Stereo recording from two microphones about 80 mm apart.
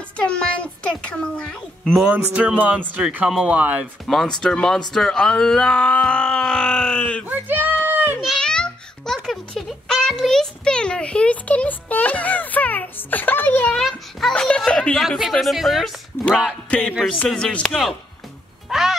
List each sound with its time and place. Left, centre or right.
0.2 s speech: centre
2.0 s speech: centre
4.0 s speech: centre
7.2 s a sound: right
8.4 s a sound: centre
13.7 s a sound: centre
14.3 s speech: centre
15.0 s speech: centre
16.1 s music: left
16.7 s speech: centre
18.7 s music: centre